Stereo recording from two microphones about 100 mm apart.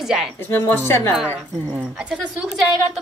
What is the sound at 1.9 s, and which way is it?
A woman's voice, 5° right (ahead or behind).